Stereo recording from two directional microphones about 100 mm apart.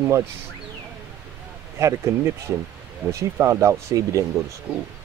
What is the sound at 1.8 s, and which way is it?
Speech, 30° right (ahead or behind).